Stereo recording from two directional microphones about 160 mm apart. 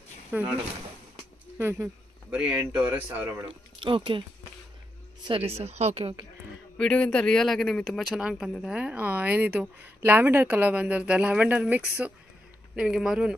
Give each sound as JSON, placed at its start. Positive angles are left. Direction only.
{"t": 0.3, "sound": "speech", "side_deg": -10}
{"t": 1.6, "sound": "speech", "side_deg": -15}
{"t": 3.4, "sound": "speech", "side_deg": -30}
{"t": 5.2, "sound": "speech", "side_deg": -35}
{"t": 6.8, "sound": "speech", "side_deg": 5}